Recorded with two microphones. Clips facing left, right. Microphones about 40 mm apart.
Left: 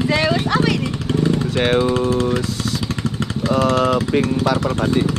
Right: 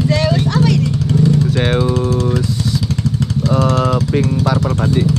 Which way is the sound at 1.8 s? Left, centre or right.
Left.